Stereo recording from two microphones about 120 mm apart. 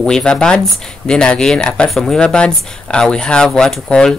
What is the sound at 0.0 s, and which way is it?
Speech, 5° left (ahead or behind).